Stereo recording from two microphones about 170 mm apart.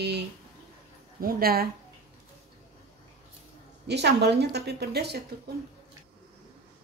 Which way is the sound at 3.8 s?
80° right.